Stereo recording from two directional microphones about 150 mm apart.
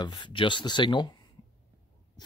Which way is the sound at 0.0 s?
30° left (ahead or behind).